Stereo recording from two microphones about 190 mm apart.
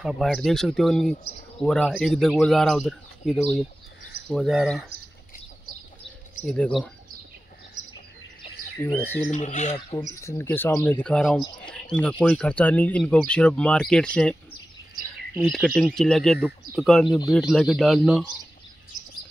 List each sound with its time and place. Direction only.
0.0 s speech: centre (ahead or behind)
6.4 s speech: 5° left (ahead or behind)
8.8 s speech: 10° left (ahead or behind)
9.3 s speech: 40° left (ahead or behind)
9.8 s speech: 25° left (ahead or behind); by 14.3 s 5° left (ahead or behind)
15.3 s speech: centre (ahead or behind)